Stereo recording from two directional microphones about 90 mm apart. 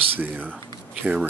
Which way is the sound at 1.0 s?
15° right (ahead or behind).